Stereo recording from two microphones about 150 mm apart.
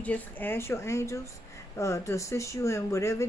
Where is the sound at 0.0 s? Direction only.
10° left (ahead or behind).